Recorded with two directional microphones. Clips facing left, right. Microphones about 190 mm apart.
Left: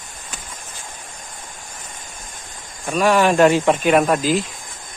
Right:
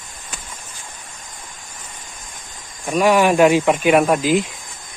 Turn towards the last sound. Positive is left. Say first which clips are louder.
# right 1 dB
turn(degrees=-15)  # may be behind; listen again after turning